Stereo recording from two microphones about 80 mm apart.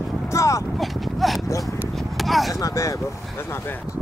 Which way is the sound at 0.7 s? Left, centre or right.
Centre.